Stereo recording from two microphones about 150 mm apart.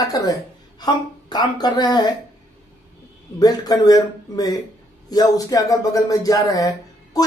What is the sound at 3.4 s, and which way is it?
Speech, 25° left (ahead or behind).